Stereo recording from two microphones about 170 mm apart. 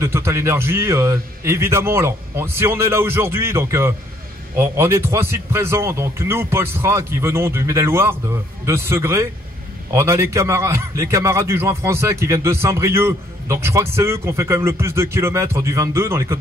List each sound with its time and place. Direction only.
0.0 s a man's voice: 15° right (ahead or behind)